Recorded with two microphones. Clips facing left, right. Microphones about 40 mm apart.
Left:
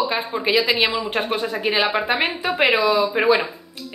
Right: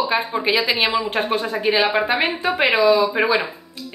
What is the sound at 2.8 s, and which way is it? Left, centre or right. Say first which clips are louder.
Speech: right 3 dB; centre.